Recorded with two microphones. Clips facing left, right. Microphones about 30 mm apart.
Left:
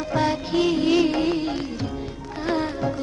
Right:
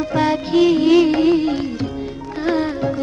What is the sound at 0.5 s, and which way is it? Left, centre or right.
Music, centre.